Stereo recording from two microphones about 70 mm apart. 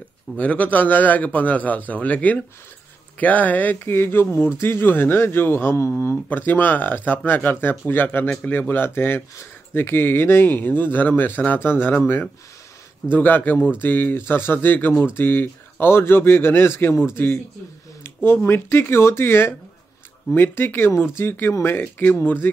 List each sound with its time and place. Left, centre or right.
0.4 s speech: left
6.2 s speech: left
13.1 s speech: left
18.0 s speech: left